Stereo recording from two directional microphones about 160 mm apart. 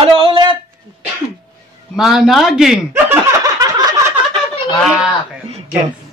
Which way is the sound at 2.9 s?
15° right (ahead or behind).